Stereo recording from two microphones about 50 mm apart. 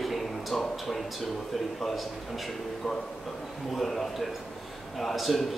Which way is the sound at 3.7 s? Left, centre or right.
Centre.